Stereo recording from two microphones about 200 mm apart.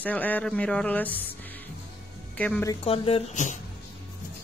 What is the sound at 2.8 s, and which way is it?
Speech, 30° left (ahead or behind).